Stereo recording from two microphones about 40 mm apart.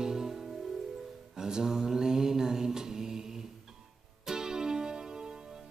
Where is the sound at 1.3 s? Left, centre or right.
Centre.